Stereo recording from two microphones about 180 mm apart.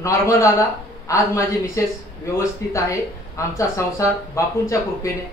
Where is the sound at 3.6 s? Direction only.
15° left (ahead or behind).